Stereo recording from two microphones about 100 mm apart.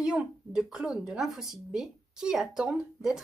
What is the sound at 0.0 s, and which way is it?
Speech, 5° right (ahead or behind).